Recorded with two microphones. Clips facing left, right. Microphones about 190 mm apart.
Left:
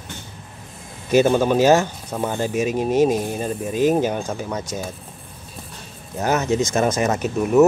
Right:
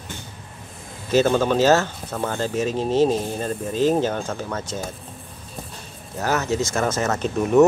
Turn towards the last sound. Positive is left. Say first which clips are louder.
# left 1 dB
turn(degrees=5)  # may be behind; listen again after turning